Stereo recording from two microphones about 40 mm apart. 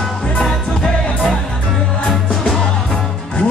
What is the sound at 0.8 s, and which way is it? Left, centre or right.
Music, left.